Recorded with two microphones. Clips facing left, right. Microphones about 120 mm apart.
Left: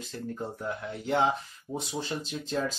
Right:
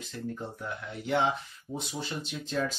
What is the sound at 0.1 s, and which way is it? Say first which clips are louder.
Speech: left 1 dB; 35° left (ahead or behind).